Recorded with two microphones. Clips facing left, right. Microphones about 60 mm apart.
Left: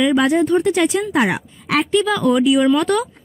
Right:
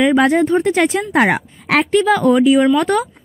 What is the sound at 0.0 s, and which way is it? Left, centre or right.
A woman's voice, right.